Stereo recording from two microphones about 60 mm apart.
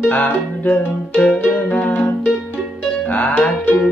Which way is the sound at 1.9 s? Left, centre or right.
Left.